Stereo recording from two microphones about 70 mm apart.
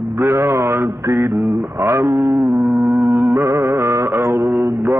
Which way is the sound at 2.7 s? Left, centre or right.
Right.